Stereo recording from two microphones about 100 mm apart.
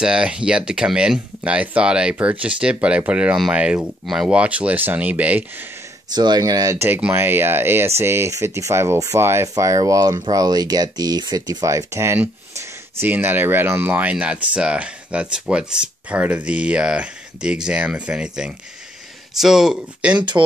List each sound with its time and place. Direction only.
0.0 s speech: 10° right (ahead or behind)
6.1 s speech: 45° right (ahead or behind)
7.0 s speech: 20° right (ahead or behind)